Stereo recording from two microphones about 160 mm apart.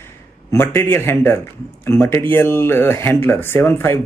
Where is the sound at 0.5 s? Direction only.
15° left (ahead or behind).